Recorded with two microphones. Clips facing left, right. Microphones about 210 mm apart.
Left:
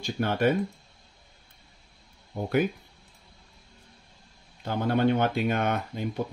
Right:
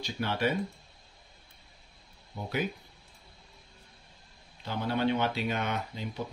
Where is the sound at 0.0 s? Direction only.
50° left (ahead or behind).